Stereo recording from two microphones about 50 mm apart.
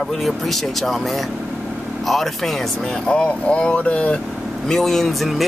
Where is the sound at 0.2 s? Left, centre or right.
Centre.